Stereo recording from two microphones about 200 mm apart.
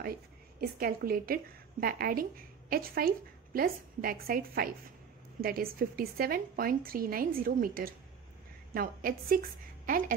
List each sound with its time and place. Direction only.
0.0 s a woman's voice: 50° right (ahead or behind)